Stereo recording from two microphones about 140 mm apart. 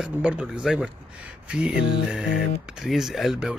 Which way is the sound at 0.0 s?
5° right (ahead or behind).